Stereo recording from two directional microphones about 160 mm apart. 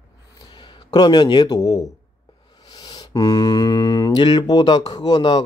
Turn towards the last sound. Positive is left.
turn(degrees=25)  # may be behind; listen again after turning